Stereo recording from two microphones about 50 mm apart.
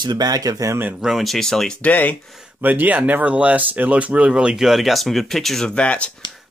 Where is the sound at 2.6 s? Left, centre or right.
Right.